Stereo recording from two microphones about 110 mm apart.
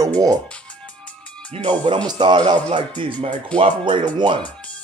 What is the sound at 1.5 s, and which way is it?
Speech, 65° right (ahead or behind).